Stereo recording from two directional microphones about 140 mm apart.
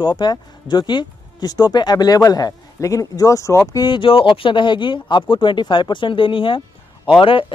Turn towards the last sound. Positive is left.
turn(degrees=40)  # may be behind; listen again after turning